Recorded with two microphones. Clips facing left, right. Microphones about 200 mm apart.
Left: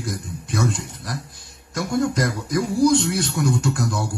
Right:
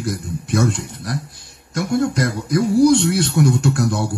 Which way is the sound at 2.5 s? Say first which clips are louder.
Right 5 dB; 65° right (ahead or behind).